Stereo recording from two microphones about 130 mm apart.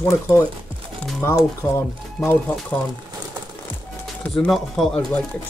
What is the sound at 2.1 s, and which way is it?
Speech, 5° left (ahead or behind).